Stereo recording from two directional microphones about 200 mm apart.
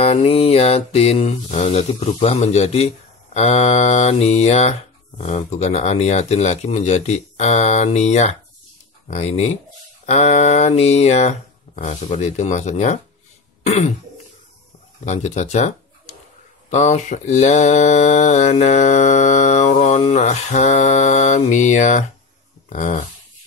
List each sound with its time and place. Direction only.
0.0 s speech: 30° left (ahead or behind)
15.0 s speech: 35° left (ahead or behind)
22.7 s a sound: 40° left (ahead or behind)